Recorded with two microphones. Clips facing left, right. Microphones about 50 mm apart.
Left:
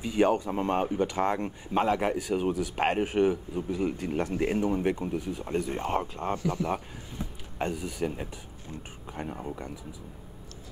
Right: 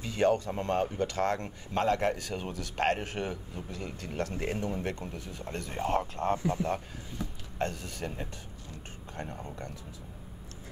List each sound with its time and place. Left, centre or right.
0.0 s speech: centre
7.5 s speech: centre